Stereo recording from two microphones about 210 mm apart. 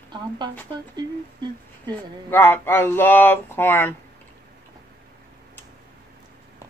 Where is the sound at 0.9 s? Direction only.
20° right (ahead or behind).